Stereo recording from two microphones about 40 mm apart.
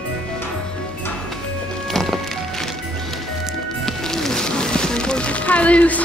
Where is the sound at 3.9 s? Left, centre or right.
Centre.